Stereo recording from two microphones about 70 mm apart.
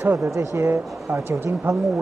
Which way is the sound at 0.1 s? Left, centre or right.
Right.